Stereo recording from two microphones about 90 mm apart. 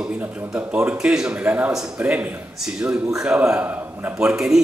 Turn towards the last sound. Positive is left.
turn(degrees=-5)  # may be behind; listen again after turning